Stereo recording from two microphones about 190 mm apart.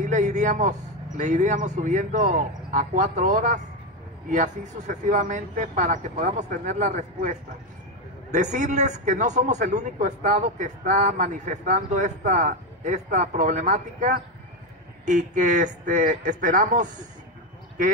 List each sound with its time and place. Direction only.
0.0 s a man's voice: 40° right (ahead or behind)